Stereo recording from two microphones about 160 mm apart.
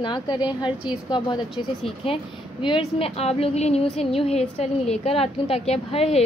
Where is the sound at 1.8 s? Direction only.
35° left (ahead or behind).